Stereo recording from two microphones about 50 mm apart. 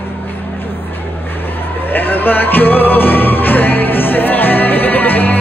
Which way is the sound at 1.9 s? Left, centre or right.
Left.